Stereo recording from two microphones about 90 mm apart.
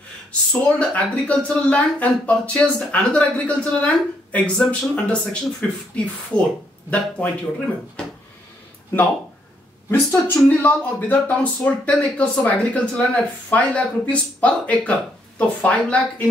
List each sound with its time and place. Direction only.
0.3 s speech: 10° left (ahead or behind)
9.8 s speech: 20° left (ahead or behind)